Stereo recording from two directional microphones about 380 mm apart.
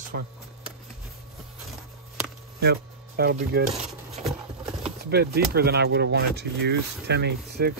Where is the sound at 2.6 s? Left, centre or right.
Right.